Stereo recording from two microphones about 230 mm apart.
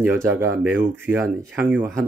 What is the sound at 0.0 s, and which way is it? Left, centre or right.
Speech, centre.